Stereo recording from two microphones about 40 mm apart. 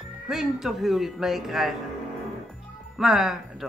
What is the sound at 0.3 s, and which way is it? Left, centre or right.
A woman's voice, centre.